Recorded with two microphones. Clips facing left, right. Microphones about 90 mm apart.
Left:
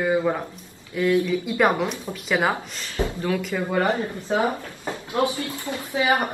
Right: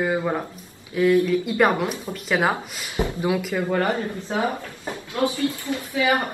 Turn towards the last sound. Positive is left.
turn(degrees=20)  # may be behind; listen again after turning